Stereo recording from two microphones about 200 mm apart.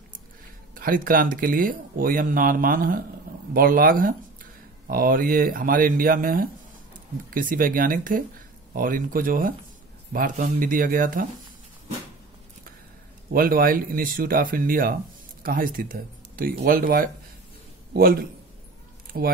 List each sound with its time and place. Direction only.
0.7 s speech: 45° right (ahead or behind)
13.3 s speech: 45° right (ahead or behind)